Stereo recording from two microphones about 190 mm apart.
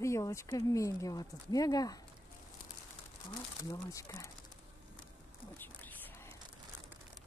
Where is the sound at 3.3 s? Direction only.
15° left (ahead or behind).